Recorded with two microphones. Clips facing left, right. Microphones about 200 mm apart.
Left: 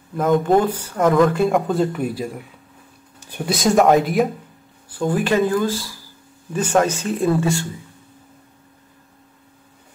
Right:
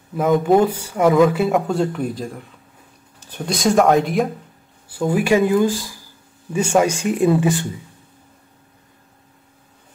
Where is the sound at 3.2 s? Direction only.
10° left (ahead or behind).